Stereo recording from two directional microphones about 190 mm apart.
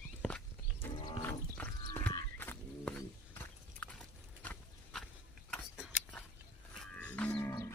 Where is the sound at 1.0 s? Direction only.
10° left (ahead or behind).